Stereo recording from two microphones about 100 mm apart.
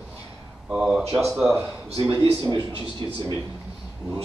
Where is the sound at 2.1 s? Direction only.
50° right (ahead or behind).